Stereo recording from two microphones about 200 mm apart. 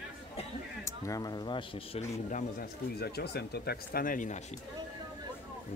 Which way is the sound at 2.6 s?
55° left (ahead or behind).